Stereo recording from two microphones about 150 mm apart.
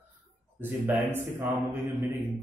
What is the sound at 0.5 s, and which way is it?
A man's voice, 15° right (ahead or behind).